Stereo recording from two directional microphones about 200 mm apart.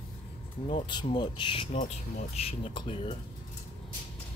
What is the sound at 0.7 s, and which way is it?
Speech, 25° left (ahead or behind).